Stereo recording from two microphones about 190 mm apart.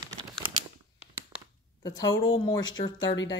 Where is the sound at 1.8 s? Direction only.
20° left (ahead or behind).